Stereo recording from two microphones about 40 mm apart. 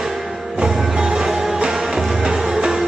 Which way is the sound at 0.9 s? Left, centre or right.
Centre.